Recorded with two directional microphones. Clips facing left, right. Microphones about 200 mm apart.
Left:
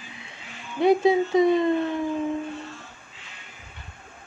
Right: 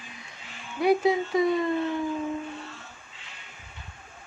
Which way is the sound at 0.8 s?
25° left (ahead or behind).